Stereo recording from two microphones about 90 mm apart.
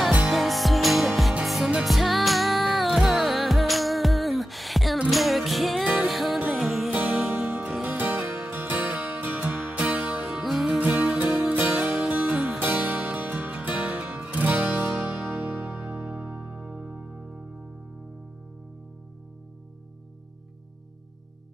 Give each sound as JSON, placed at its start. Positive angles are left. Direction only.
{"t": 0.3, "sound": "music", "side_deg": 0}
{"t": 8.0, "sound": "music", "side_deg": -20}
{"t": 10.2, "sound": "music", "side_deg": 0}
{"t": 10.8, "sound": "music", "side_deg": -15}
{"t": 12.5, "sound": "music", "side_deg": -20}